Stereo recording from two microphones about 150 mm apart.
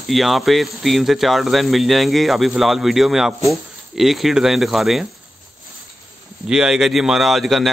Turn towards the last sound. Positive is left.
turn(degrees=0)  # may be behind; listen again after turning